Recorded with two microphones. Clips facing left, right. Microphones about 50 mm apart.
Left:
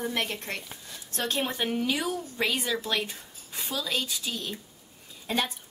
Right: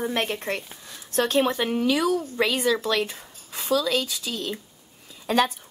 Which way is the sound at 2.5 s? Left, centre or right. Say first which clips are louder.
Right 6 dB; right.